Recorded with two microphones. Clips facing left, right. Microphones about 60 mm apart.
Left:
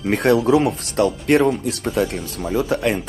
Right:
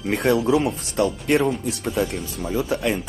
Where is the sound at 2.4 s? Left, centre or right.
Centre.